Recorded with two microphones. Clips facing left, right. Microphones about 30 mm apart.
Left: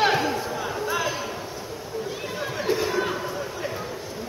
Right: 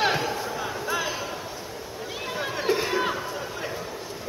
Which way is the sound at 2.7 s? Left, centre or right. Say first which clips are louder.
Left 1 dB; centre.